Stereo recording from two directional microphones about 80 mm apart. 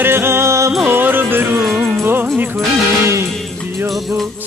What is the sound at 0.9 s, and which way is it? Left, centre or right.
Music, right.